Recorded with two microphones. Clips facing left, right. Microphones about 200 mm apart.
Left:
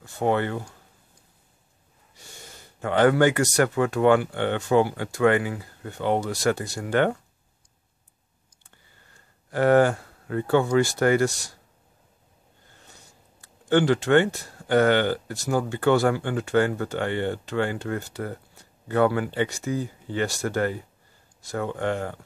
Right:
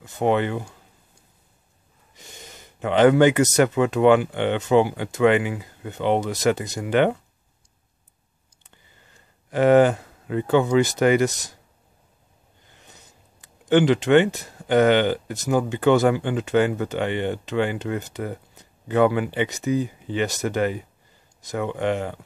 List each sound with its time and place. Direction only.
0.0 s speech: 20° right (ahead or behind)
2.1 s speech: 20° right (ahead or behind)
8.6 s a sound: 20° right (ahead or behind)
12.6 s speech: 20° right (ahead or behind)